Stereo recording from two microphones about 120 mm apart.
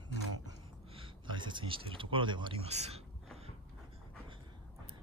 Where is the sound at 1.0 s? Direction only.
40° right (ahead or behind).